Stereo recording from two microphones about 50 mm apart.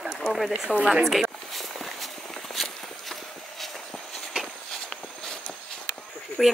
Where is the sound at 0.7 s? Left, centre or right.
Left.